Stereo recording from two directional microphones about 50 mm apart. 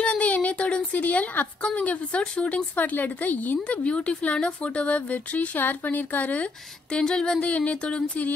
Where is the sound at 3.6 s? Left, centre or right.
Left.